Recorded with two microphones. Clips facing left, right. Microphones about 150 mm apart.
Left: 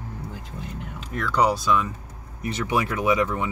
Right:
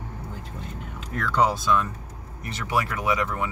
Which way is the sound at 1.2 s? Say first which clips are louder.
Left 1 dB; centre (ahead or behind).